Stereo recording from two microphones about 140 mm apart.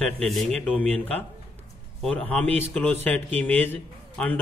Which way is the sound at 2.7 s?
5° left (ahead or behind).